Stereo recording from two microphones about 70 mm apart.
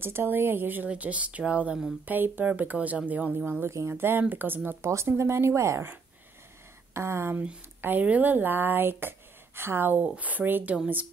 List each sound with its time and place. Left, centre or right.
0.0 s speech: right; by 1.8 s centre
2.0 s speech: right
6.9 s speech: right
7.3 s speech: right